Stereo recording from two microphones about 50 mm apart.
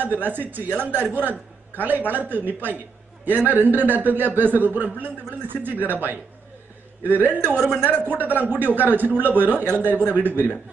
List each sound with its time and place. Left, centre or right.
0.0 s a man's voice: right